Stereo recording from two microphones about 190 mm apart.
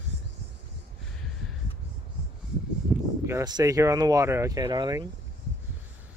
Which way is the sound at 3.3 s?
20° right (ahead or behind).